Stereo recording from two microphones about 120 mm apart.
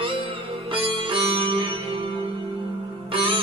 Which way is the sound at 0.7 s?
45° right (ahead or behind).